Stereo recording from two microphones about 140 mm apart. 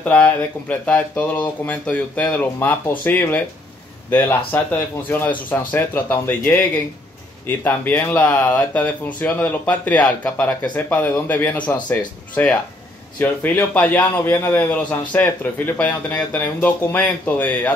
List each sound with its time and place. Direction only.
0.0 s a man's voice: 10° left (ahead or behind)